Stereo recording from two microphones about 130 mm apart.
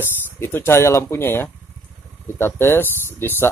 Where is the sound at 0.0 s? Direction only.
15° left (ahead or behind).